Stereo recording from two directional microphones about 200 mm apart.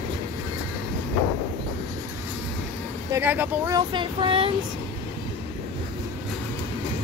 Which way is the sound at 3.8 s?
25° right (ahead or behind).